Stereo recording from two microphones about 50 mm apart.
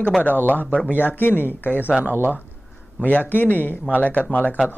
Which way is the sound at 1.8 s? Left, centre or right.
Right.